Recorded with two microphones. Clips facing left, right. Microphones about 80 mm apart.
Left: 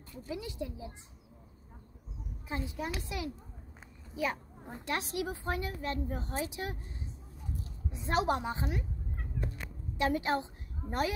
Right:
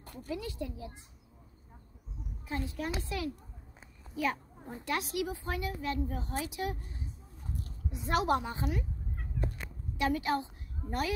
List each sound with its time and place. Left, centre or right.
0.0 s a sound: right
0.3 s a woman's voice: centre
2.4 s a child's voice: centre
7.9 s a woman's voice: left
9.9 s a woman's voice: left